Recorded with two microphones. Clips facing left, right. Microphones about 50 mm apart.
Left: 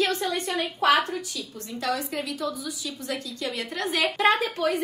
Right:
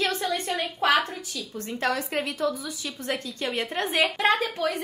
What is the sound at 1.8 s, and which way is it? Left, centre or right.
A woman's voice, right.